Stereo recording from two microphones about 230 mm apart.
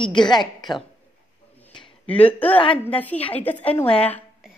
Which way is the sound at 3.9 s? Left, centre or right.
Centre.